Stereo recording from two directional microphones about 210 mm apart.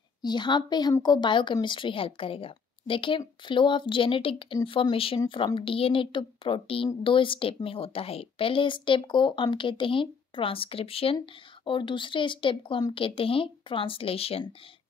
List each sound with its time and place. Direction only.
0.2 s a woman's voice: 20° left (ahead or behind)